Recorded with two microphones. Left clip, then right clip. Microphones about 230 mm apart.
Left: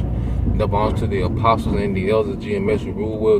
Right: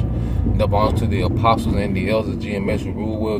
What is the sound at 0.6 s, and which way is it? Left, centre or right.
Speech, centre.